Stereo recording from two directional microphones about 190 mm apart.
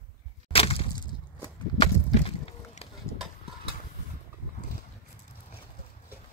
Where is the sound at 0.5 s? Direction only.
30° left (ahead or behind).